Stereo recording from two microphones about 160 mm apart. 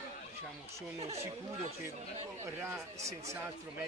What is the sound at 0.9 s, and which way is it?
Speech, 40° right (ahead or behind).